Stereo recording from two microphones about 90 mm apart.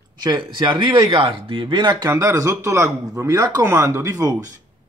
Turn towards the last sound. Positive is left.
turn(degrees=-40)  # may be behind; listen again after turning